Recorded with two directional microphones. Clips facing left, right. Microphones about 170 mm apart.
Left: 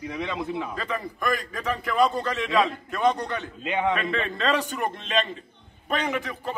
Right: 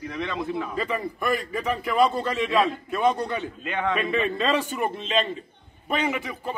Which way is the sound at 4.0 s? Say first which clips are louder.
Right 3 dB; 10° right (ahead or behind).